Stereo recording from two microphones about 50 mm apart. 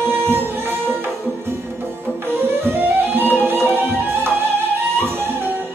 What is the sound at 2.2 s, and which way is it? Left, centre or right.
Music, right.